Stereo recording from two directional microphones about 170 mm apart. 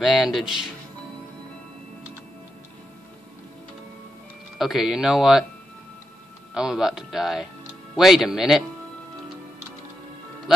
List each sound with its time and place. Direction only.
0.0 s speech: centre (ahead or behind)
4.6 s speech: centre (ahead or behind)
6.5 s speech: 5° right (ahead or behind)